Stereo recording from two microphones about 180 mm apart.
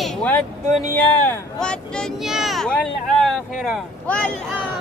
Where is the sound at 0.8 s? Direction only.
10° left (ahead or behind).